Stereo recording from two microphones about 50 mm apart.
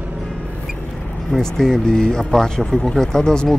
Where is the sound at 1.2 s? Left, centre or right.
Centre.